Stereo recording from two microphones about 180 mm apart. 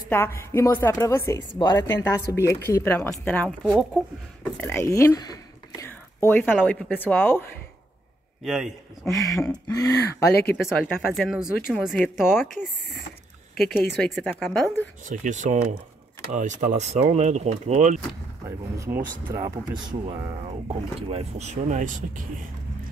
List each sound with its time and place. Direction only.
0.1 s speech: 15° left (ahead or behind)
5.9 s whispering: 10° left (ahead or behind)
6.6 s speech: 10° left (ahead or behind)
8.5 s speech: 5° right (ahead or behind)
9.1 s a sound: 20° left (ahead or behind)
9.7 s speech: 20° left (ahead or behind)
11.1 s speech: 5° right (ahead or behind)
15.0 s speech: 45° right (ahead or behind)
18.9 s speech: 20° right (ahead or behind)
20.4 s speech: 35° right (ahead or behind)